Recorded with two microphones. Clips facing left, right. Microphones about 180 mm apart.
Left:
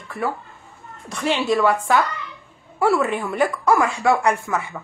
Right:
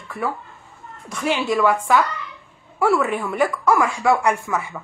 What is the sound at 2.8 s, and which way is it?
Speech, 25° left (ahead or behind).